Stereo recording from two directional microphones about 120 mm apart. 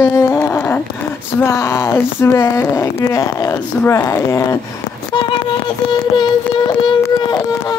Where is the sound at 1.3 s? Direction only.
25° left (ahead or behind).